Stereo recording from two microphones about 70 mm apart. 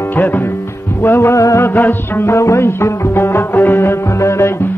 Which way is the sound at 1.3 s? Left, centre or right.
Left.